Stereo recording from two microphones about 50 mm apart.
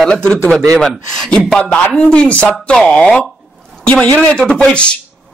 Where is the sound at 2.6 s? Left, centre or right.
Centre.